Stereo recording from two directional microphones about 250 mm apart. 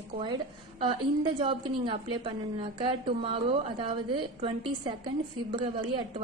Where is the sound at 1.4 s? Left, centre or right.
Centre.